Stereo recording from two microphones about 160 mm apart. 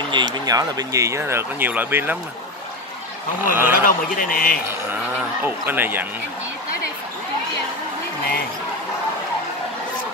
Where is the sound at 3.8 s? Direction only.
60° left (ahead or behind).